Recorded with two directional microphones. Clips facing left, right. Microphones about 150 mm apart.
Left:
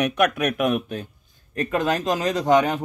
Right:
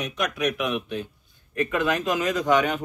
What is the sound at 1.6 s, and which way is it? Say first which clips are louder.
A man's voice: left 1 dB; 35° left (ahead or behind).